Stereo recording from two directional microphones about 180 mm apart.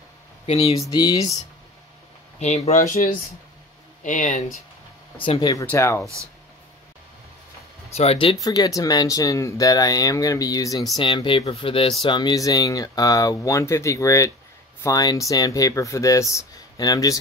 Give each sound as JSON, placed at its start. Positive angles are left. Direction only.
{"t": 0.7, "sound": "speech", "side_deg": 20}
{"t": 2.4, "sound": "speech", "side_deg": 40}
{"t": 5.1, "sound": "speech", "side_deg": 30}
{"t": 7.9, "sound": "speech", "side_deg": 35}
{"t": 8.4, "sound": "speech", "side_deg": 20}